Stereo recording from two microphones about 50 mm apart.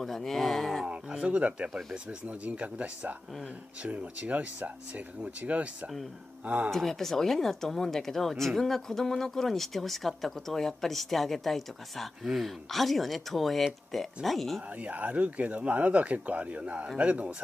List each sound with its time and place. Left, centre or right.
0.0 s speech: centre
0.8 s speech: right
1.7 s speech: centre
2.0 s speech: right
6.7 s speech: centre
14.8 s speech: right